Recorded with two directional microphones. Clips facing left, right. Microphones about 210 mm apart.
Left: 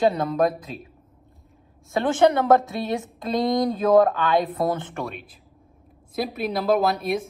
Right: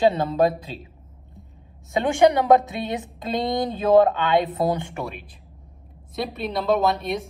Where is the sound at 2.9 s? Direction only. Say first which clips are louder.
Left 3 dB; 20° right (ahead or behind).